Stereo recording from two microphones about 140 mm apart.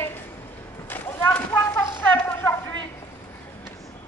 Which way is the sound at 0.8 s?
15° left (ahead or behind).